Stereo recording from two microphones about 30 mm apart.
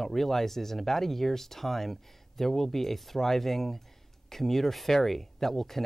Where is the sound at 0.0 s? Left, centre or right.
Centre.